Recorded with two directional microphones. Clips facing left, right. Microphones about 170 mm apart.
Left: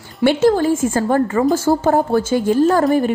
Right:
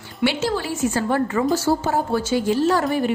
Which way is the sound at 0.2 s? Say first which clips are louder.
Left 8 dB; 50° left (ahead or behind).